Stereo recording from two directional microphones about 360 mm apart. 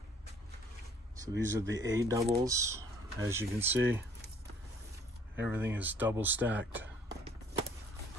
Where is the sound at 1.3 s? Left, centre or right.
Right.